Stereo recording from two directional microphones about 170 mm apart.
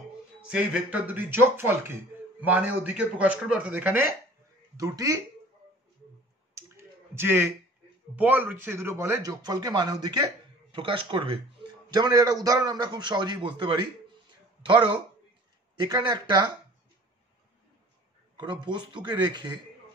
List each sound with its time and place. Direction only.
0.5 s speech: 5° right (ahead or behind)
6.5 s clicking: 15° right (ahead or behind)
8.2 s speech: 10° right (ahead or behind); by 16.4 s 25° right (ahead or behind)
18.3 s speech: 25° right (ahead or behind)